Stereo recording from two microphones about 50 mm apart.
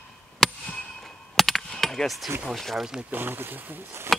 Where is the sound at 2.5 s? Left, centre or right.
Centre.